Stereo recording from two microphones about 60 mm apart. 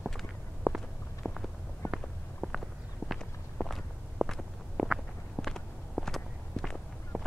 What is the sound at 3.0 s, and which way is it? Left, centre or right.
Walk, right.